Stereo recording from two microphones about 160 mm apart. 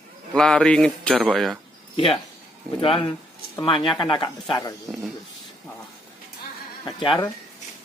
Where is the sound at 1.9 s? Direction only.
35° left (ahead or behind).